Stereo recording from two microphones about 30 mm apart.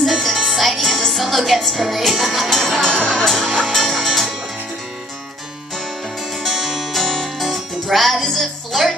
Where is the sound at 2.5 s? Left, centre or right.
Centre.